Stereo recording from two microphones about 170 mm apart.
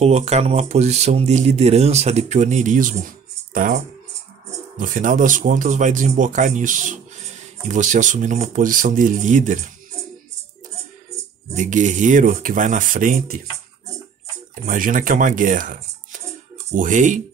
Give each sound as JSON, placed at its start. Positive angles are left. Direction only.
{"t": 0.0, "sound": "speech", "side_deg": -40}
{"t": 11.5, "sound": "speech", "side_deg": -45}
{"t": 14.5, "sound": "speech", "side_deg": -50}